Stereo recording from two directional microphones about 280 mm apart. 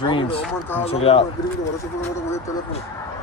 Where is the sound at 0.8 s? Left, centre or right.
Left.